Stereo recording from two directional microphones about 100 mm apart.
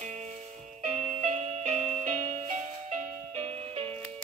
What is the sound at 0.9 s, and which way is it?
Music, 90° right.